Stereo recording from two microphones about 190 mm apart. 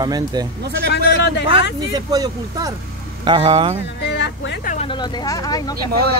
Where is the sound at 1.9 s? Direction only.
20° right (ahead or behind).